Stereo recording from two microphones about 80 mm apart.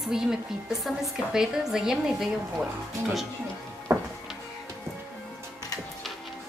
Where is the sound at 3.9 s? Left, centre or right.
Right.